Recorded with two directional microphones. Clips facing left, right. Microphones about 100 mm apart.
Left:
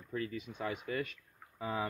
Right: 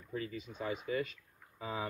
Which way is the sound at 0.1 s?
50° left (ahead or behind).